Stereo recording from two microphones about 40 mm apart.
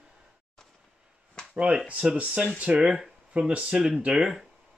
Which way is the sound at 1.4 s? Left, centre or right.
Left.